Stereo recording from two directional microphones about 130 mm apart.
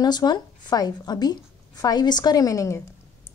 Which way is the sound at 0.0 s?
35° left (ahead or behind).